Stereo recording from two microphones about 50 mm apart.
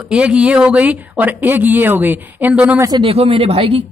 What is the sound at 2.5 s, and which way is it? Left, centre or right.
Speech, right.